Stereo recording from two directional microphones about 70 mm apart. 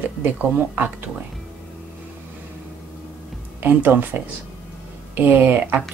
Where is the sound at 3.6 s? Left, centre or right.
Right.